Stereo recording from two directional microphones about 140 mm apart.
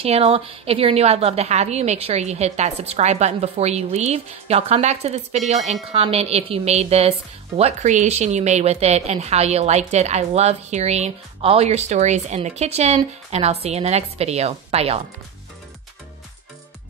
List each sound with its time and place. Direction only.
0.0 s speech: 45° right (ahead or behind)